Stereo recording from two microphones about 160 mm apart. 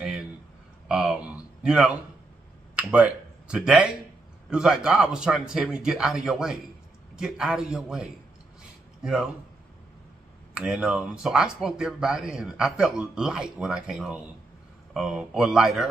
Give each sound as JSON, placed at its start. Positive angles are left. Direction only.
{"t": 0.8, "sound": "a sound", "side_deg": -5}
{"t": 2.7, "sound": "speech", "side_deg": -10}
{"t": 10.5, "sound": "speech", "side_deg": -5}